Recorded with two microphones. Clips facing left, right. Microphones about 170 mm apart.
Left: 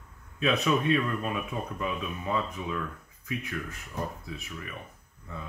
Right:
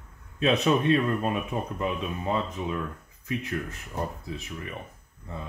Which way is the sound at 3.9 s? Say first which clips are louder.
Right 3 dB; 25° right (ahead or behind).